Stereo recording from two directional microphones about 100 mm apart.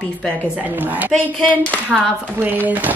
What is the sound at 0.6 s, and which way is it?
Speech, 15° right (ahead or behind).